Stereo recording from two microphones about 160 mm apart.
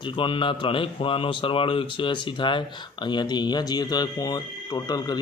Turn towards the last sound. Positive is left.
turn(degrees=25)  # may be behind; listen again after turning